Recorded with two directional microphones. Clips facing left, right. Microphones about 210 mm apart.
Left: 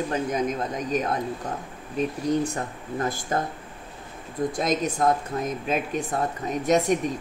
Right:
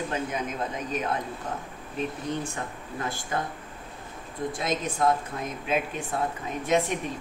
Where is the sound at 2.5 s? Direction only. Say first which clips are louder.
Left 4 dB; 40° left (ahead or behind).